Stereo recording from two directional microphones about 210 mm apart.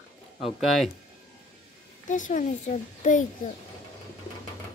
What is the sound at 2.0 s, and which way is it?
A woman's voice, 35° left (ahead or behind).